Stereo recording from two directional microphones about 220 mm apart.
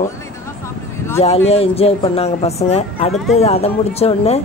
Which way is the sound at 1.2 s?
30° left (ahead or behind).